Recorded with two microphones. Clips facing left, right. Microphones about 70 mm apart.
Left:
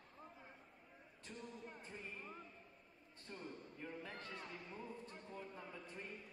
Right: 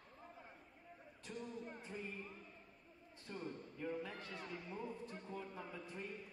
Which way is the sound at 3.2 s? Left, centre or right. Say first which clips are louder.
Right 4 dB; centre.